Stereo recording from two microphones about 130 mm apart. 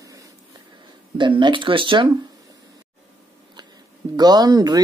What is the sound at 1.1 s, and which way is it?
Speech, 40° right (ahead or behind).